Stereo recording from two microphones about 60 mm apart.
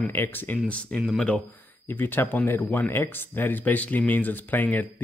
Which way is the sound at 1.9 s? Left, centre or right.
Left.